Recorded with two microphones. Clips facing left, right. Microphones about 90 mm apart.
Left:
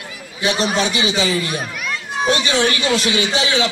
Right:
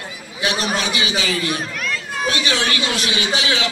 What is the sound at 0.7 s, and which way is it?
A man's voice, 30° left (ahead or behind).